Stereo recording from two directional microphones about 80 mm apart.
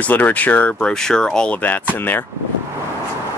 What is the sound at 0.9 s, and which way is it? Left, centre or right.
Speech, centre.